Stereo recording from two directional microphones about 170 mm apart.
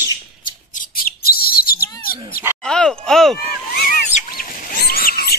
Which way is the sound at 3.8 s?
60° left (ahead or behind).